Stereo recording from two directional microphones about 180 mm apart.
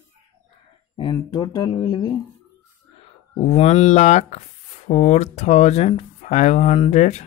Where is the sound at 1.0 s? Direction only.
25° left (ahead or behind).